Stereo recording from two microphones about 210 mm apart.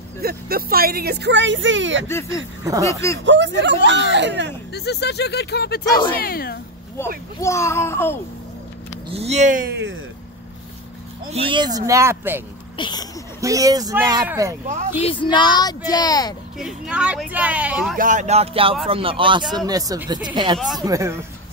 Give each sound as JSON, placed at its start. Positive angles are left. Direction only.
{"t": 0.2, "sound": "a woman's voice", "side_deg": -45}
{"t": 2.0, "sound": "a child's voice", "side_deg": 15}
{"t": 3.3, "sound": "speech", "side_deg": -60}
{"t": 4.7, "sound": "speech", "side_deg": 50}
{"t": 7.4, "sound": "a child's voice", "side_deg": 15}
{"t": 9.1, "sound": "music", "side_deg": -30}
{"t": 11.3, "sound": "speech", "side_deg": -25}
{"t": 12.7, "sound": "speech", "side_deg": 20}
{"t": 13.4, "sound": "speech", "side_deg": -15}
{"t": 15.0, "sound": "speech", "side_deg": 25}
{"t": 16.5, "sound": "speech", "side_deg": -5}
{"t": 17.9, "sound": "music", "side_deg": -35}
{"t": 18.9, "sound": "speech", "side_deg": -25}